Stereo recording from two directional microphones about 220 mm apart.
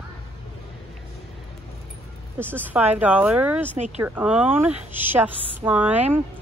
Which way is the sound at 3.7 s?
30° right (ahead or behind).